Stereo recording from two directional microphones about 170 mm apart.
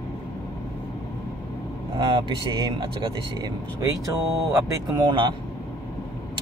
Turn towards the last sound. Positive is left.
turn(degrees=-25)  # may be behind; listen again after turning